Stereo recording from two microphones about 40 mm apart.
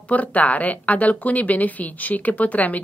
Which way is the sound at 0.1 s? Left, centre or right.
Left.